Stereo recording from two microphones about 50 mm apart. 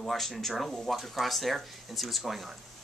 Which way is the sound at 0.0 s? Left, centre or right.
Centre.